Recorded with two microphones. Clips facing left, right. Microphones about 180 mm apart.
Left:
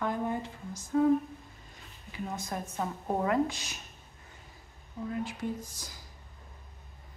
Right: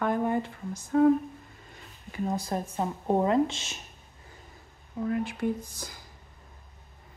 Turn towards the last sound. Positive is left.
turn(degrees=-60)  # may be behind; listen again after turning